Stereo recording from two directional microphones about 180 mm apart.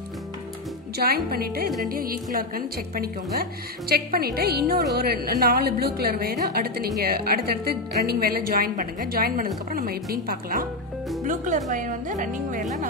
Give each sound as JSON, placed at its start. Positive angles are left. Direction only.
{"t": 0.9, "sound": "a woman's voice", "side_deg": -60}